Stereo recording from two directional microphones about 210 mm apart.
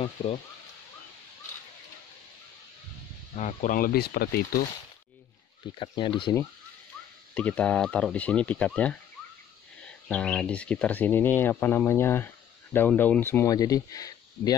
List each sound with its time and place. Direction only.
0.2 s speech: 25° left (ahead or behind)
3.3 s speech: 35° left (ahead or behind)
5.8 s speech: 20° left (ahead or behind)
7.3 s speech: 5° left (ahead or behind)